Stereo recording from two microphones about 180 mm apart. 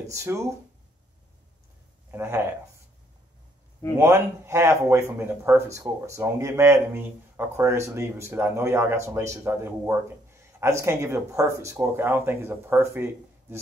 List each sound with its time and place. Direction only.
0.1 s speech: 15° right (ahead or behind)
2.0 s speech: 15° right (ahead or behind)
4.0 s speech: 15° right (ahead or behind)